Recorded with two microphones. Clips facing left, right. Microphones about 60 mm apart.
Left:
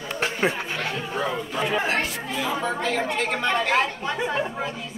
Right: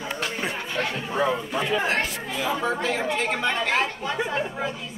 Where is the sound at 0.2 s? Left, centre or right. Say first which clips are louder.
Left 7 dB; left.